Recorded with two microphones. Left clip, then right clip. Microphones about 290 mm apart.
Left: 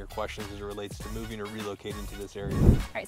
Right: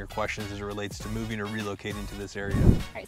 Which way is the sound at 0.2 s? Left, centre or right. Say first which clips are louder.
Right 3 dB; right.